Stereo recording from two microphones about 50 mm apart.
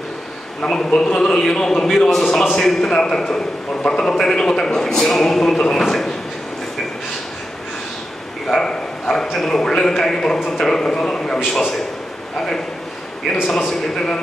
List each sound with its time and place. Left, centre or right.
0.6 s a man's voice: centre
8.5 s a man's voice: centre
9.1 s a man's voice: centre
12.4 s a man's voice: centre
13.9 s a man's voice: centre